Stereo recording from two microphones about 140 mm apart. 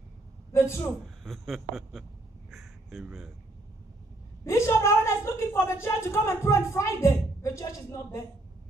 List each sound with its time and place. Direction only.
0.5 s a man's voice: 20° left (ahead or behind)
1.0 s speech: centre (ahead or behind)
2.5 s crow: centre (ahead or behind)
4.5 s a woman's voice: 20° left (ahead or behind)